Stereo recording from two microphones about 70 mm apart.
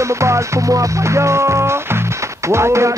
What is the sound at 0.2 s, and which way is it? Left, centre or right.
Music, right.